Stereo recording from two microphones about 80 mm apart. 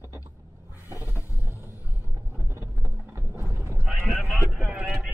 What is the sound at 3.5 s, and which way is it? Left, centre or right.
Sheep, right.